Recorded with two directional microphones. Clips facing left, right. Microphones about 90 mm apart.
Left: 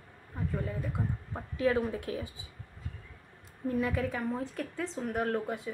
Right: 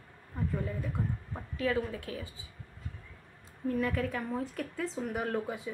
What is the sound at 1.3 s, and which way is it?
Speech, 25° left (ahead or behind).